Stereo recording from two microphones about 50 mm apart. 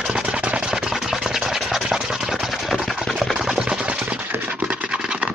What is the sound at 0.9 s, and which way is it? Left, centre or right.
Engine, centre.